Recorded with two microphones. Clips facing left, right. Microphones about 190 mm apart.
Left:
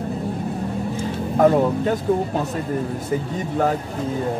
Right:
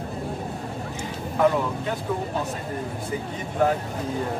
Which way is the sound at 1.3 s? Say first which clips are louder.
Left 6 dB; 45° left (ahead or behind).